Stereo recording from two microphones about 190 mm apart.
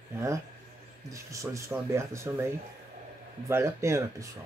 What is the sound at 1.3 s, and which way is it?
Speech, 15° right (ahead or behind).